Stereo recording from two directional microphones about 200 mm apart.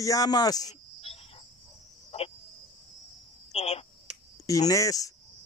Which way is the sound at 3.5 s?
30° left (ahead or behind).